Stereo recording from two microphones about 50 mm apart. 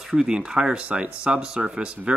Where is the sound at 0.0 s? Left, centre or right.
Centre.